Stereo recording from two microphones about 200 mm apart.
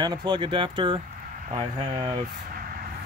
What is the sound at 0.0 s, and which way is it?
Speech, 20° right (ahead or behind).